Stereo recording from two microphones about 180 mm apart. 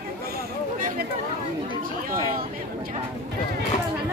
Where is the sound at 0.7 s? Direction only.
50° right (ahead or behind).